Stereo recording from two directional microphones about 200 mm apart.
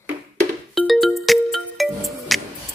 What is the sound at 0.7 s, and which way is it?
Music, centre (ahead or behind).